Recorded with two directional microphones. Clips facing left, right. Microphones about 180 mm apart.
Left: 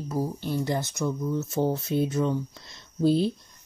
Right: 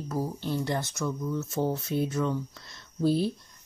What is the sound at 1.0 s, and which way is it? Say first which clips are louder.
Speech: left 3 dB; 30° left (ahead or behind).